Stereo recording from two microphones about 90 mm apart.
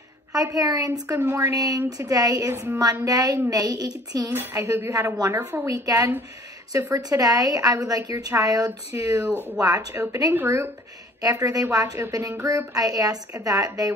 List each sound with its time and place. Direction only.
0.3 s a woman's voice: 40° right (ahead or behind)
1.5 s a woman's voice: 45° right (ahead or behind)
4.6 s a woman's voice: 30° right (ahead or behind)
5.1 s a woman's voice: 40° right (ahead or behind)
11.1 s a woman's voice: 40° right (ahead or behind)